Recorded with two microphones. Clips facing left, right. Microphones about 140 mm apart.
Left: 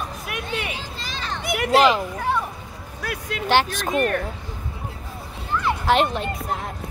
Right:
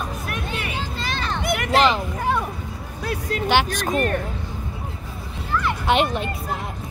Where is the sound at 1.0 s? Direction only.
60° right (ahead or behind).